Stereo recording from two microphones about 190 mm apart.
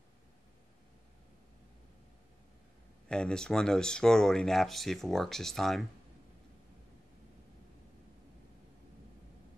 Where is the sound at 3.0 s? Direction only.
5° left (ahead or behind).